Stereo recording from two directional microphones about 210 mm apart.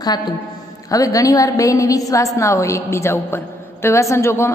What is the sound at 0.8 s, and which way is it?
A woman's voice, 15° left (ahead or behind).